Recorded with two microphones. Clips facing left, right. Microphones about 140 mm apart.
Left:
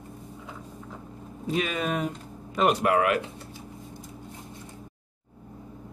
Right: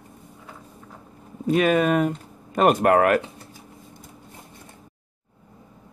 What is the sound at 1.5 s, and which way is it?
Speech, 55° right (ahead or behind).